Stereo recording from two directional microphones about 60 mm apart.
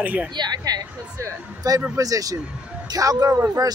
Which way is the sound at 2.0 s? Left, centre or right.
Right.